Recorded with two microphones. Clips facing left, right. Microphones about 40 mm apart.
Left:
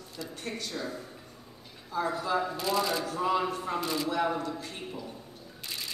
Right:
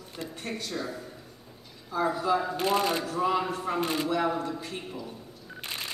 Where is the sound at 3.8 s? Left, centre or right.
Right.